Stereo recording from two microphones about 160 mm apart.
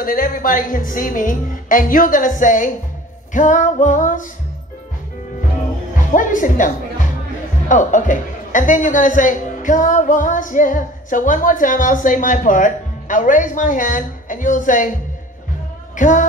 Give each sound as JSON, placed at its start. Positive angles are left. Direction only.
{"t": 0.0, "sound": "a woman's voice", "side_deg": 60}
{"t": 3.3, "sound": "music", "side_deg": 50}
{"t": 6.1, "sound": "a woman's voice", "side_deg": 55}
{"t": 16.0, "sound": "music", "side_deg": 55}